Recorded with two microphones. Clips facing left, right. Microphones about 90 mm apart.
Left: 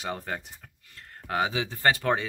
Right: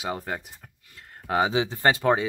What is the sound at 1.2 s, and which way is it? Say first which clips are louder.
Speech: right 5 dB; 20° right (ahead or behind).